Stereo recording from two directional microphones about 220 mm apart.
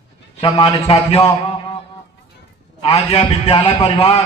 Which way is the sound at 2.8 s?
25° left (ahead or behind).